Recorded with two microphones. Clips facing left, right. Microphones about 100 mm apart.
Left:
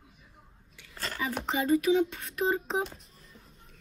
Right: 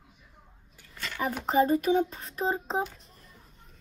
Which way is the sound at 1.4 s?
40° right (ahead or behind).